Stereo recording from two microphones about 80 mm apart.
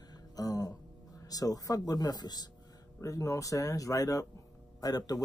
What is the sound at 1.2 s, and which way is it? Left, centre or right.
Speech, left.